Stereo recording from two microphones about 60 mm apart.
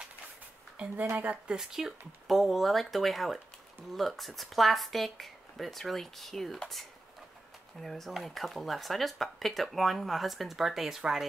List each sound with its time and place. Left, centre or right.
1.1 s speech: right
1.5 s speech: centre
7.8 s speech: centre